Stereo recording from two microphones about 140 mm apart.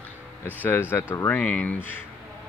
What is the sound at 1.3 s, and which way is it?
Speech, 10° left (ahead or behind).